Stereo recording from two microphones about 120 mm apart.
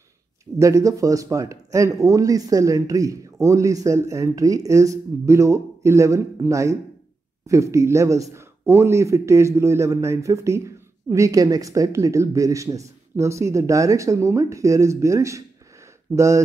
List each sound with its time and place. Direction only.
0.6 s speech: 25° right (ahead or behind)